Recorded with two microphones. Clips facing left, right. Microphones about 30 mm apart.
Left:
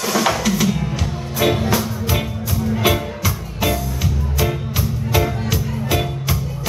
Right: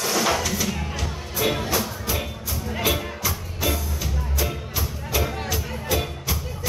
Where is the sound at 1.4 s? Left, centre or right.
Left.